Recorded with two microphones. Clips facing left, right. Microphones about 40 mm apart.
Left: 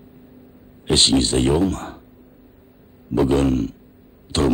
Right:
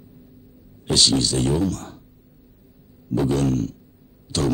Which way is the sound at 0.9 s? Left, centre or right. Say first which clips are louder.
Left 3 dB; left.